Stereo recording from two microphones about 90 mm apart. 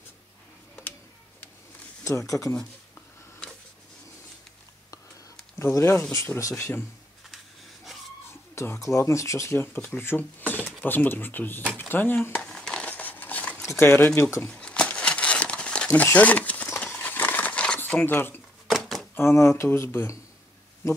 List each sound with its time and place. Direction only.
2.0 s speech: 35° left (ahead or behind)
5.6 s speech: 30° left (ahead or behind)
8.5 s speech: 30° left (ahead or behind)
12.4 s a sound: 5° left (ahead or behind)
13.6 s speech: 30° left (ahead or behind)
14.5 s crumpling: 10° left (ahead or behind)
15.9 s speech: 20° left (ahead or behind)
16.7 s crumpling: 15° left (ahead or behind)
18.7 s a sound: centre (ahead or behind)
19.1 s speech: 30° left (ahead or behind)